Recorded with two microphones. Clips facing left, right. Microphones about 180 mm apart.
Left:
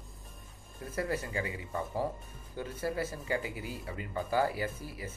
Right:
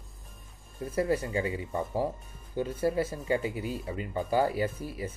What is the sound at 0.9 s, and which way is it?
Speech, 30° right (ahead or behind).